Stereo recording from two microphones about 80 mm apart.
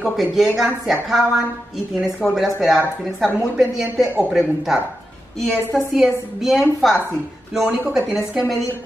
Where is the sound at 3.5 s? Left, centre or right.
Centre.